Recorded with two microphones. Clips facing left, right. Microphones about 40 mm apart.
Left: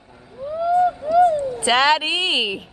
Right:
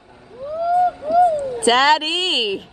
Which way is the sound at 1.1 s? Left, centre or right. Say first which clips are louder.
Even; centre.